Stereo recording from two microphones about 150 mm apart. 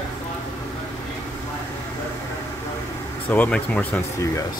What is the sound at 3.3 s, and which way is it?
Speech, 10° left (ahead or behind).